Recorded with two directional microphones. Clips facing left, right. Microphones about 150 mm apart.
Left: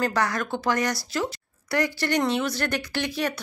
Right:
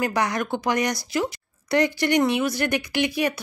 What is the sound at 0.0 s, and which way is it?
Speech, 15° right (ahead or behind).